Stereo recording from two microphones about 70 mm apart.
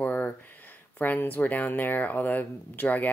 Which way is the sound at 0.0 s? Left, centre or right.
Centre.